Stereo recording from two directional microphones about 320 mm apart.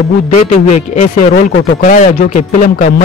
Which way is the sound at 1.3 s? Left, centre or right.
Left.